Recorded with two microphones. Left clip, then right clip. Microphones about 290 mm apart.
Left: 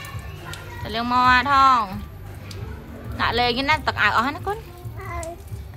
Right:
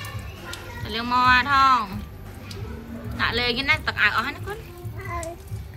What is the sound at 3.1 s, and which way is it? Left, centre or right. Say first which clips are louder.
A woman's voice: left 3 dB; centre.